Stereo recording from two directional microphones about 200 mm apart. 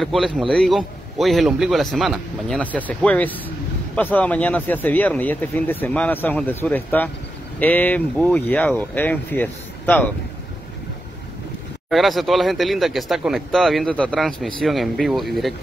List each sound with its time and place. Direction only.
0.0 s speech: centre (ahead or behind)
11.9 s speech: centre (ahead or behind)